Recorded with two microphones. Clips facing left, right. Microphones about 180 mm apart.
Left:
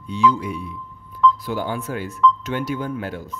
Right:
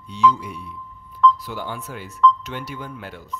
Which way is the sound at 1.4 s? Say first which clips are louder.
Left 6 dB; 50° left (ahead or behind).